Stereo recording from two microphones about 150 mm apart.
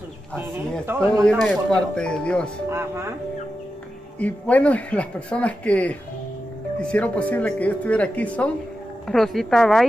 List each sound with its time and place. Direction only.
0.8 s speech: 20° right (ahead or behind)
1.2 s speech: 5° left (ahead or behind)
2.7 s speech: 15° right (ahead or behind)
4.2 s speech: 10° left (ahead or behind)